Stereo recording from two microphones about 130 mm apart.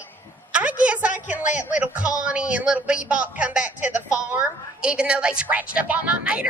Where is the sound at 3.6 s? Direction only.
70° left (ahead or behind).